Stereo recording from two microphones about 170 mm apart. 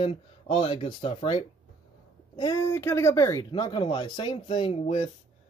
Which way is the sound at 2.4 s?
20° left (ahead or behind).